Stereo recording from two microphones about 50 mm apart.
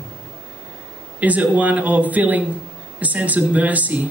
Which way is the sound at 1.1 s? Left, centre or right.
Right.